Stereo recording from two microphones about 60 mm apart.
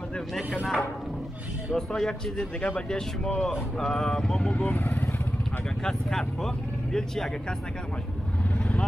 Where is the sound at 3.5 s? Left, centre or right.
Centre.